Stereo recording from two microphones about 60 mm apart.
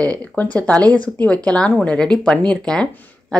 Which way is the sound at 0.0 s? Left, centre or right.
Left.